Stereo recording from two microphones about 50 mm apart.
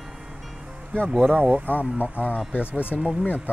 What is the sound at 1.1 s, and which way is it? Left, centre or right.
Speech, right.